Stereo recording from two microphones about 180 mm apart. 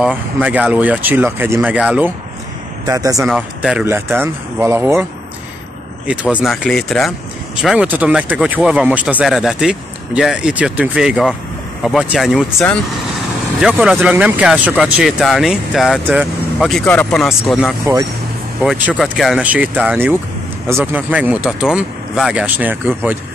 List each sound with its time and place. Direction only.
0.0 s speech: 5° right (ahead or behind)
2.9 s speech: 20° right (ahead or behind)
3.3 s speech: 5° right (ahead or behind)
6.3 s speech: 5° right (ahead or behind)
13.6 s speech: 5° right (ahead or behind)